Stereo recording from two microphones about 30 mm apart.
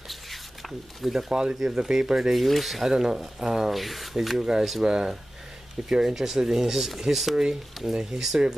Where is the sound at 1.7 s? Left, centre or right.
Right.